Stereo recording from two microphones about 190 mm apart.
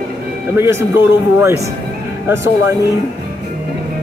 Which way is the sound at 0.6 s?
15° right (ahead or behind).